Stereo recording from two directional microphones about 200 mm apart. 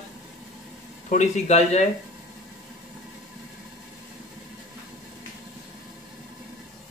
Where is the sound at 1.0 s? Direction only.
35° left (ahead or behind).